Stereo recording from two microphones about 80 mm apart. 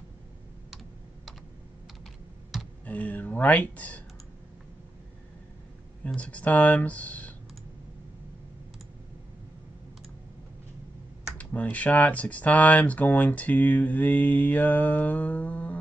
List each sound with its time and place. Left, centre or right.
2.8 s speech: centre
6.0 s speech: centre
11.3 s speech: centre